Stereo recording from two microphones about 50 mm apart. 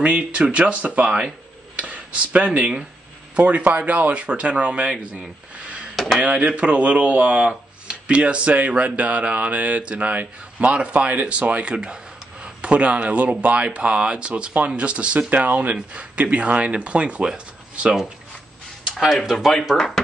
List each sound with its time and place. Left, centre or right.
0.0 s speech: right
4.9 s speech: centre
18.9 s speech: centre